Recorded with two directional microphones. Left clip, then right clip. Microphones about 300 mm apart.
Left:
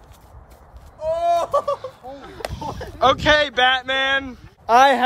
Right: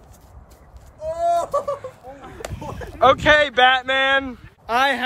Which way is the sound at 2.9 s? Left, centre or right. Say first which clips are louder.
Right 2 dB; centre.